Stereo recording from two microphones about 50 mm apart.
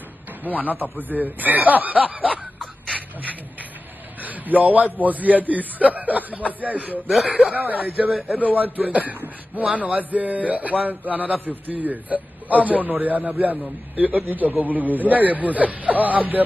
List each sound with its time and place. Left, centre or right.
0.5 s a man's voice: right
2.9 s a sound: right
4.2 s a man's voice: right
7.2 s speech: right
7.5 s a man's voice: right